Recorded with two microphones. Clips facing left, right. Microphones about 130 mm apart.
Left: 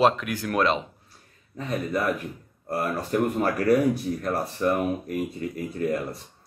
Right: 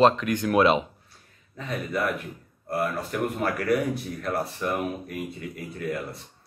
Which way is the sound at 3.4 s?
40° left (ahead or behind).